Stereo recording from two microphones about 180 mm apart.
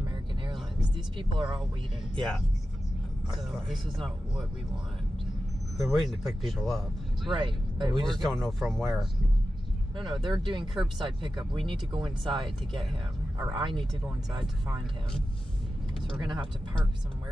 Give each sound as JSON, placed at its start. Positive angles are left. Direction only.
{"t": 0.9, "sound": "speech", "side_deg": -25}
{"t": 2.1, "sound": "speech", "side_deg": 0}
{"t": 5.8, "sound": "speech", "side_deg": 0}
{"t": 7.2, "sound": "speech", "side_deg": -25}
{"t": 8.0, "sound": "speech", "side_deg": 0}
{"t": 9.9, "sound": "speech", "side_deg": -25}
{"t": 16.2, "sound": "speech", "side_deg": -25}